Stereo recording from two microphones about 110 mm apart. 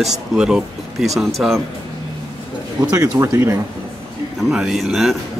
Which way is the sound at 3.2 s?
25° right (ahead or behind).